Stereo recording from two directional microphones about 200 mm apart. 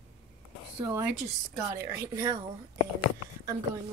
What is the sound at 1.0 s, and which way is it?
Speech, 10° right (ahead or behind).